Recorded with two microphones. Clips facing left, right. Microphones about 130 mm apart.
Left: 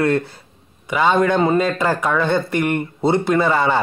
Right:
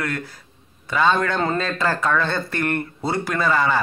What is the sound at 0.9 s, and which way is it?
A man's voice, 15° left (ahead or behind).